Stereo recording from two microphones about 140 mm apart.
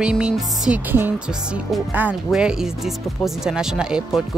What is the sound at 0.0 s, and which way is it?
Speech, 5° right (ahead or behind).